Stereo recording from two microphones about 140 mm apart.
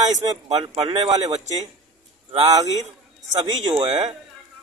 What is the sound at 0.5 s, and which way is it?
Speech, 45° right (ahead or behind).